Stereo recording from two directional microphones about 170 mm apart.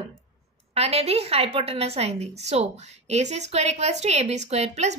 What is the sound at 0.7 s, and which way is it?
A woman's voice, 35° right (ahead or behind).